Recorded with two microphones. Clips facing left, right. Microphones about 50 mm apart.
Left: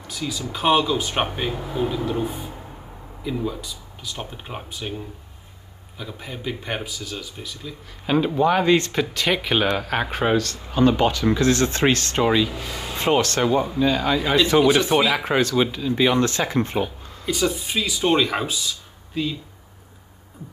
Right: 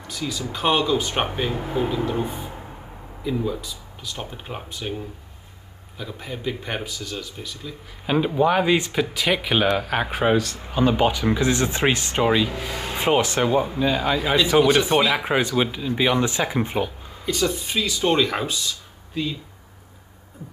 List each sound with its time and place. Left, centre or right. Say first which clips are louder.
0.0 s speech: even; centre
1.6 s speech: even; right
2.2 s speech: left 2 dB; centre
10.3 s speech: even; centre
17.3 s speech: even; centre